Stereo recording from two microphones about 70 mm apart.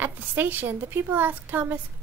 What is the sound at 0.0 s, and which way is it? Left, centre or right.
A woman's voice, right.